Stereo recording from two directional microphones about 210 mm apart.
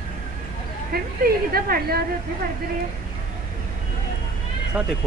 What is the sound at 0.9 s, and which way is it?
A woman's voice, 45° right (ahead or behind).